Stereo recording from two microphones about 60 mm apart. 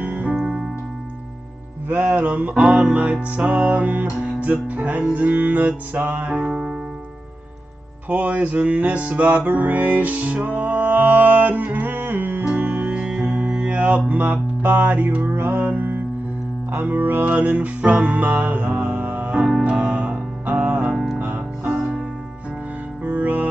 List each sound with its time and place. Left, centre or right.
0.0 s music: right
0.4 s music: centre
1.9 s music: right
6.4 s music: centre
8.1 s music: right
19.7 s music: centre
20.9 s music: centre
21.2 s music: right
23.0 s music: right